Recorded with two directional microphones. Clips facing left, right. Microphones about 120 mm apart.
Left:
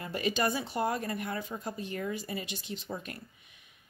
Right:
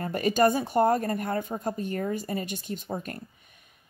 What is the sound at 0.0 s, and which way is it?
Speech, 45° right (ahead or behind).